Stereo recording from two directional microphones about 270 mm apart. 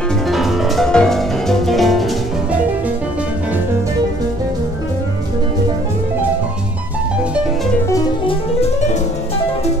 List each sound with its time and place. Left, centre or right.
0.3 s music: centre
7.9 s music: centre